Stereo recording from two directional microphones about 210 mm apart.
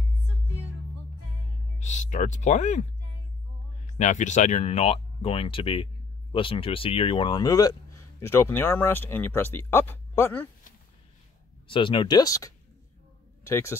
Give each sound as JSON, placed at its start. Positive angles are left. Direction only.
{"t": 1.8, "sound": "speech", "side_deg": 35}
{"t": 4.0, "sound": "speech", "side_deg": 35}
{"t": 11.6, "sound": "speech", "side_deg": 25}